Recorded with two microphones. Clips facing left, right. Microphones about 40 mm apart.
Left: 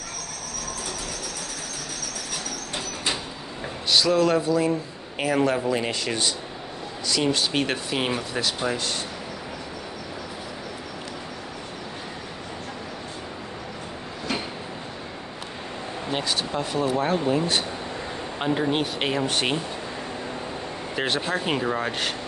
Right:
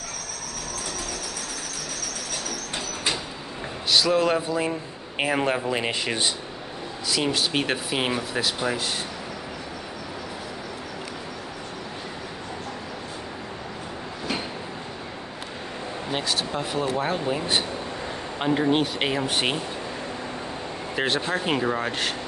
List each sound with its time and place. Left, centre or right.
4.1 s a man's voice: centre
7.1 s speech: centre
16.1 s speech: centre
18.4 s speech: centre
20.9 s speech: centre